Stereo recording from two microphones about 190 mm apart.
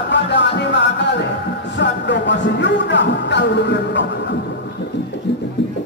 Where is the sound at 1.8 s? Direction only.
65° left (ahead or behind).